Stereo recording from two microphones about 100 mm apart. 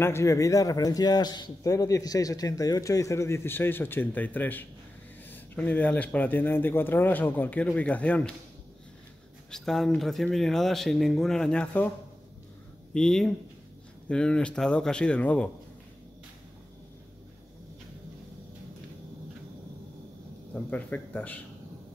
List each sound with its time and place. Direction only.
0.0 s a man's voice: 30° left (ahead or behind); by 8.4 s 10° left (ahead or behind)
9.5 s speech: 5° left (ahead or behind)
12.9 s speech: 5° left (ahead or behind)
20.7 s speech: 15° left (ahead or behind)